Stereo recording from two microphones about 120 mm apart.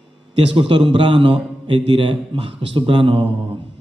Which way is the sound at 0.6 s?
40° right (ahead or behind).